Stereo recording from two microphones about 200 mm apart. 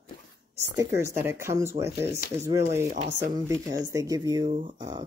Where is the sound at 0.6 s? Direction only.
15° right (ahead or behind).